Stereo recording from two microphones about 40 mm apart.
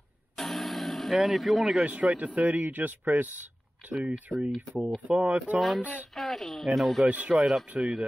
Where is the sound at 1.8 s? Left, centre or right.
Right.